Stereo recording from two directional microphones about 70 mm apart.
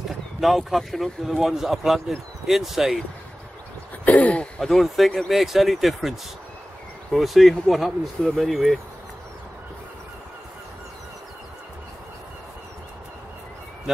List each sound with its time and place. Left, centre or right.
0.4 s speech: centre
4.0 s a sound: left
4.6 s speech: centre